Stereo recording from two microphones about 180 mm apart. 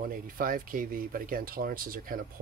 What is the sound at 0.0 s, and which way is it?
Speech, 50° right (ahead or behind).